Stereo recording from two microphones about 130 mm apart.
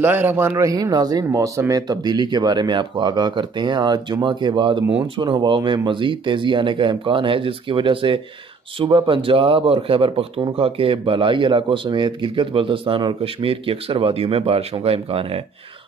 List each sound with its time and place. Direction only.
0.0 s speech: 15° right (ahead or behind); by 15.4 s 45° right (ahead or behind)